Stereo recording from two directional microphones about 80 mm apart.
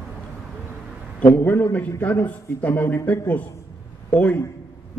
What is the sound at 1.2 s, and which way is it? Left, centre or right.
A man's voice, left.